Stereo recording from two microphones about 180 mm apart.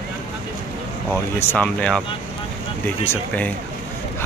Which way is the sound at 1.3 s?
10° left (ahead or behind).